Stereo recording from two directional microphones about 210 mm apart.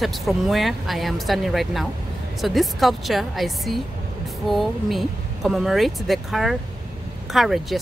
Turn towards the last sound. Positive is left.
turn(degrees=0)  # may be behind; listen again after turning